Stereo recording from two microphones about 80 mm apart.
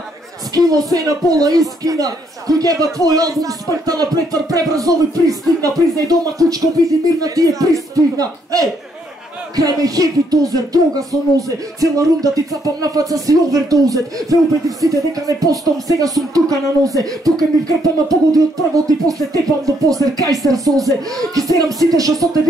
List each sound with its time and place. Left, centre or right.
0.6 s music: right
20.7 s speech: centre
21.2 s music: right